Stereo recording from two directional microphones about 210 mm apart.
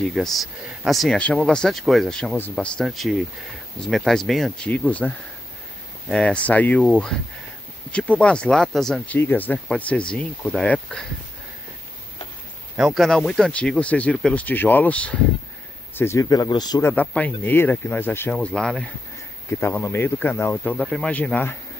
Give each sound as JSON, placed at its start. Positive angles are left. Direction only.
{"t": 0.0, "sound": "speech", "side_deg": 0}
{"t": 12.7, "sound": "speech", "side_deg": 0}
{"t": 16.9, "sound": "speech", "side_deg": 5}